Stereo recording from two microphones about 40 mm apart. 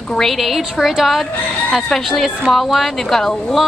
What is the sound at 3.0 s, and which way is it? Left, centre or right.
Speech, centre.